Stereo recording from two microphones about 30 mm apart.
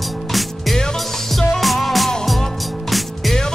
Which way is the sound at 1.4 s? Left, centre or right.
Centre.